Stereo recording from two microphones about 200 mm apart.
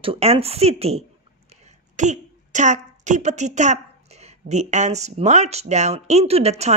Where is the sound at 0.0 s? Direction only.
30° right (ahead or behind).